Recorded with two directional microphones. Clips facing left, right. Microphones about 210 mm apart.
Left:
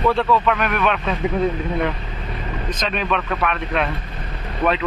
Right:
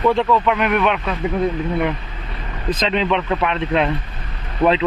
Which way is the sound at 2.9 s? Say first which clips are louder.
Right 3 dB; 20° right (ahead or behind).